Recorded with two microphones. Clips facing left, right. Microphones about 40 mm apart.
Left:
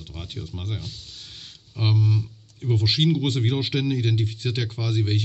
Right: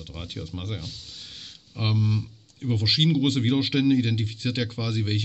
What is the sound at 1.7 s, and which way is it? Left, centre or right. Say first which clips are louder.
Speech: left 2 dB; centre.